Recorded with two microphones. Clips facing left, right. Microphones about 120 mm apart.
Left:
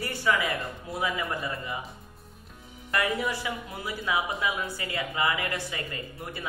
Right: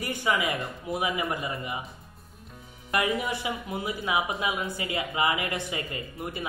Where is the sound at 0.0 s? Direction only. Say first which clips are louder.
Even; 15° right (ahead or behind).